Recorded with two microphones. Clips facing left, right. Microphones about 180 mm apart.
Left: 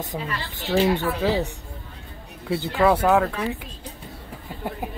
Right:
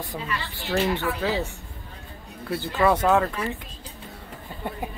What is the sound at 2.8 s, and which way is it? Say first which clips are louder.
Speech: left 2 dB; 5° left (ahead or behind).